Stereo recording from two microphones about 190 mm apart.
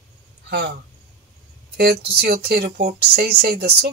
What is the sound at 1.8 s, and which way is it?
Speech, 55° right (ahead or behind).